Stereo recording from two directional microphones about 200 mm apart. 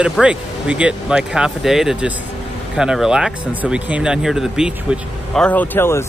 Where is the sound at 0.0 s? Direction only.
5° right (ahead or behind).